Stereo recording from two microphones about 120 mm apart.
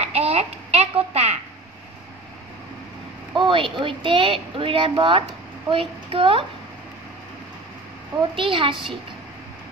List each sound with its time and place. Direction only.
0.0 s a sound: 60° right (ahead or behind)
3.3 s a woman's voice: 45° right (ahead or behind)
8.4 s a woman's voice: 45° right (ahead or behind)